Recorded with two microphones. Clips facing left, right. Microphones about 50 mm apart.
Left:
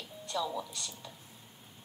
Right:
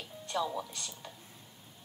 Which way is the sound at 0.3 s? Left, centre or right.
Right.